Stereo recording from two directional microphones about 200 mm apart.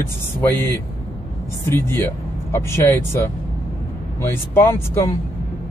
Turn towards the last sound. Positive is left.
turn(degrees=10)  # may be behind; listen again after turning